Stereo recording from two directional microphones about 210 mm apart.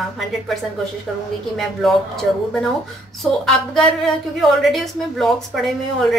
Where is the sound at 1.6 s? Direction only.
Centre (ahead or behind).